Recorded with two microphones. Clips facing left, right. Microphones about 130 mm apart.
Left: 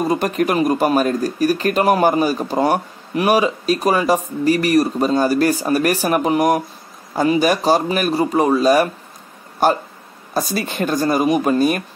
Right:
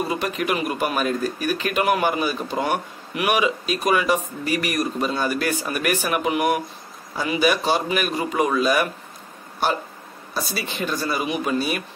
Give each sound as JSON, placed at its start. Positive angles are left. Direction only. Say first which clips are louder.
{"t": 0.0, "sound": "speech", "louder": "left 6 dB", "side_deg": 40}
{"t": 10.3, "sound": "speech", "louder": "left 7 dB", "side_deg": 45}